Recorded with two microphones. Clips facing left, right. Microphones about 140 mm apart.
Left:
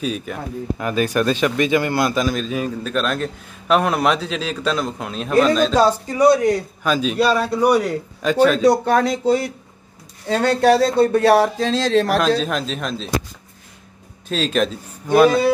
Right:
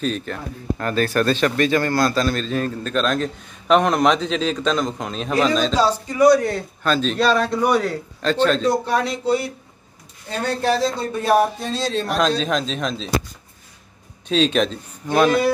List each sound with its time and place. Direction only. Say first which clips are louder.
0.0 s speech: even; 10° left (ahead or behind)
5.8 s speech: left 3 dB; 40° left (ahead or behind)
6.2 s speech: even; 20° left (ahead or behind)
8.6 s speech: left 5 dB; 55° left (ahead or behind)
10.2 s speech: left 6 dB; 90° left
12.2 s speech: left 1 dB; 5° left (ahead or behind)
14.3 s speech: right 2 dB; centre (ahead or behind)